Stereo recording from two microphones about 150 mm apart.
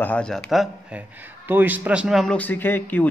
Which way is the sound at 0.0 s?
5° left (ahead or behind).